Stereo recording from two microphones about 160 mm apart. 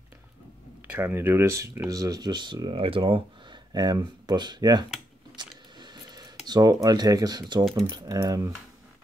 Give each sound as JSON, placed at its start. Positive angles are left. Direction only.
{"t": 0.8, "sound": "speech", "side_deg": -15}
{"t": 5.3, "sound": "a sound", "side_deg": -30}
{"t": 7.9, "sound": "speech", "side_deg": -20}